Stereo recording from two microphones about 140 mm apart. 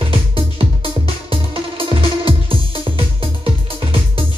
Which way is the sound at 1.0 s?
40° right (ahead or behind).